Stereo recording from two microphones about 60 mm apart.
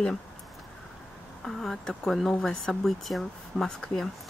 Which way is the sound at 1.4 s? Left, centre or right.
Centre.